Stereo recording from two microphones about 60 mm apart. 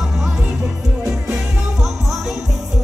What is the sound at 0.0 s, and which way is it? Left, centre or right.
Music, centre.